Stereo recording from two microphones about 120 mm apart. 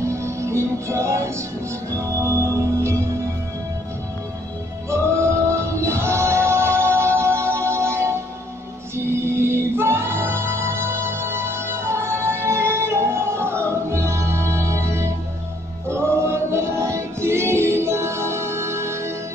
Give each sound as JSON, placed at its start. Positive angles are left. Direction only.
{"t": 0.0, "sound": "music", "side_deg": -25}
{"t": 4.8, "sound": "music", "side_deg": -25}